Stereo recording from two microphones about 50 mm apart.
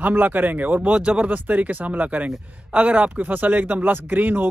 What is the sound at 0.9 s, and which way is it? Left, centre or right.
Speech, right.